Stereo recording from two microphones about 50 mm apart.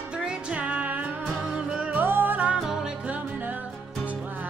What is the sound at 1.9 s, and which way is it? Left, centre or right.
Music, right.